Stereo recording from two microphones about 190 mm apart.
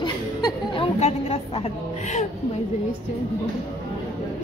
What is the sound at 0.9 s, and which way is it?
Music, 35° left (ahead or behind).